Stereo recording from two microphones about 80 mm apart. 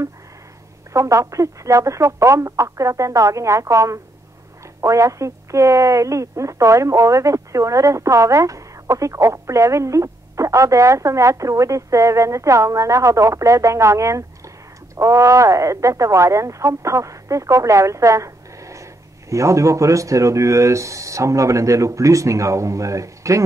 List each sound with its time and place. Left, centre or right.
0.9 s speech: right